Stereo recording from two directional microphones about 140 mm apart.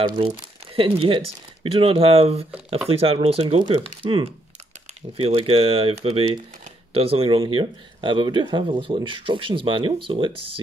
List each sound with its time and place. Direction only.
0.0 s speech: 35° right (ahead or behind)